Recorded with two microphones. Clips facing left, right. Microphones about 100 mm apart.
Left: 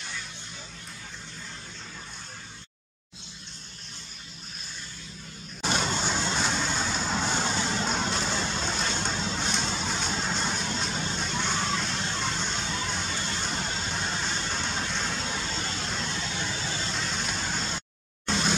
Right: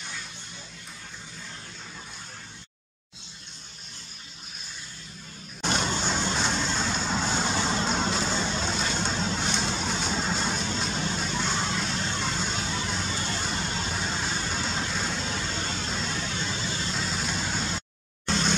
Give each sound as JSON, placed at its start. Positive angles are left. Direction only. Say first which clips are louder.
{"t": 5.6, "sound": "vehicle", "louder": "even", "side_deg": 0}